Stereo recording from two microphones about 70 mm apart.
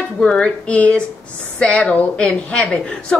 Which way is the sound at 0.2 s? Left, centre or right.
Centre.